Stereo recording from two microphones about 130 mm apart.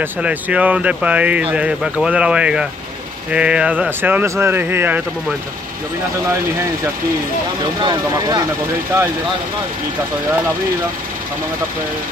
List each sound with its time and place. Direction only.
0.0 s speech: 10° right (ahead or behind)
7.8 s speech: 35° right (ahead or behind)